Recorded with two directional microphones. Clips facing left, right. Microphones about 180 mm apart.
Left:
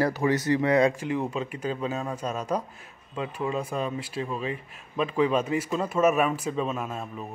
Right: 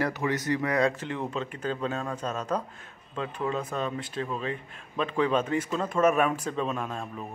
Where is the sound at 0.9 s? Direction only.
10° left (ahead or behind).